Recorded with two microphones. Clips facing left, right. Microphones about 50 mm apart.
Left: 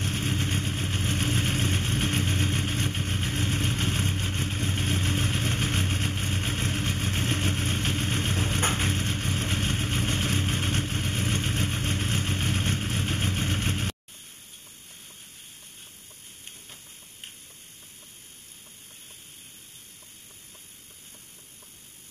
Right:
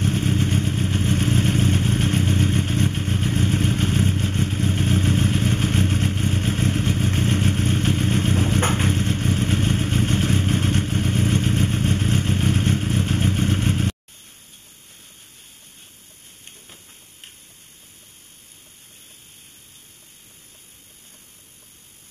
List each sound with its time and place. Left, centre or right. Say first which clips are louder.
0.0 s vehicle: right 7 dB; centre
8.5 s vehicle: right 6 dB; centre
8.8 s vehicle: right 7 dB; centre